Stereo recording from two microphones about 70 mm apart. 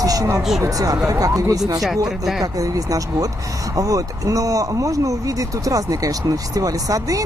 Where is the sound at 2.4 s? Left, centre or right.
Right.